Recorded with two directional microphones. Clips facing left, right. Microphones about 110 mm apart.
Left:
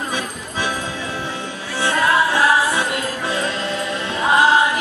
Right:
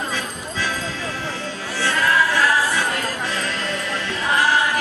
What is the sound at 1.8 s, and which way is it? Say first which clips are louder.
Music: left 2 dB; 20° left (ahead or behind).